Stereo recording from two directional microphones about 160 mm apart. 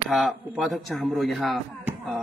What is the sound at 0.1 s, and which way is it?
Speech, centre (ahead or behind).